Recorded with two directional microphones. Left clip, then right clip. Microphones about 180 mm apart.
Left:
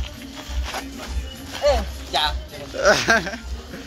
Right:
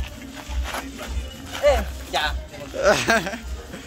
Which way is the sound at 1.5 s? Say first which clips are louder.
Right 1 dB; 10° right (ahead or behind).